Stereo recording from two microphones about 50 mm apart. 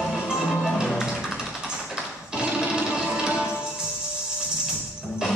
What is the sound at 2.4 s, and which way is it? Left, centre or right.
Music, centre.